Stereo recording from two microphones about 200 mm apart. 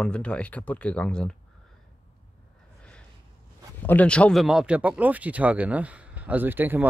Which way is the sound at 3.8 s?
10° left (ahead or behind).